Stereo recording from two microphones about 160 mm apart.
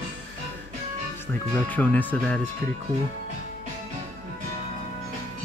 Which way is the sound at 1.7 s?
10° left (ahead or behind).